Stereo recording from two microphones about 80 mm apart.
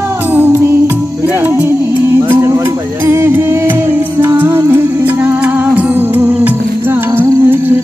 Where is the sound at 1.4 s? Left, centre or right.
Right.